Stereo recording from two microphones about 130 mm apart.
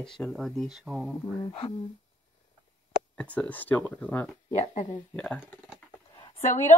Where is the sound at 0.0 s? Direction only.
5° left (ahead or behind).